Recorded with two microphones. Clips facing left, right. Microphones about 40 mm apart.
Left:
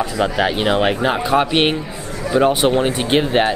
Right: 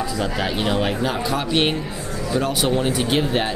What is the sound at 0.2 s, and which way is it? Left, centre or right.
Speech, left.